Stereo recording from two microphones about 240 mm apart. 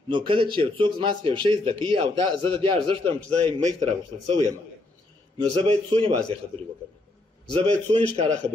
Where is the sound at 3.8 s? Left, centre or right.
Centre.